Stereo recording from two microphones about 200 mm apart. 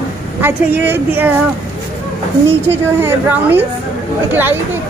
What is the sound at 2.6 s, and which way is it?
Speech, 10° right (ahead or behind).